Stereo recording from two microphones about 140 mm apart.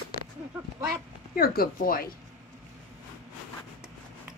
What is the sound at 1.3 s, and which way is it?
Speech, 90° left.